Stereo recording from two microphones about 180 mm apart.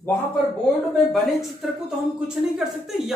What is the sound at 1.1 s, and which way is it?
Speech, centre (ahead or behind).